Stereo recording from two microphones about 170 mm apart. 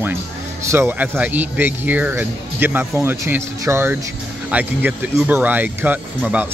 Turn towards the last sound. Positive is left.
turn(degrees=-10)  # may be behind; listen again after turning